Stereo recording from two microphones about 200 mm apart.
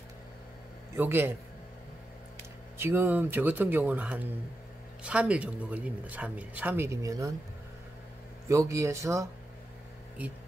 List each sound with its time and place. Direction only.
0.9 s speech: 10° right (ahead or behind)
2.8 s speech: 10° right (ahead or behind)
8.5 s speech: 15° right (ahead or behind)